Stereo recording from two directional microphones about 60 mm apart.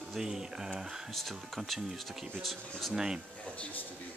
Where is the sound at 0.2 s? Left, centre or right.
Centre.